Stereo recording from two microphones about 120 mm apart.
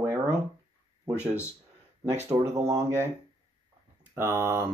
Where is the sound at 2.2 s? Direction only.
25° right (ahead or behind).